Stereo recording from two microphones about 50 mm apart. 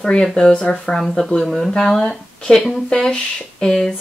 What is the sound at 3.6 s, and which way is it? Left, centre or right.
Speech, centre.